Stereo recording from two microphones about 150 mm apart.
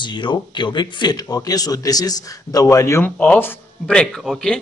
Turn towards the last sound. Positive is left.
turn(degrees=0)  # may be behind; listen again after turning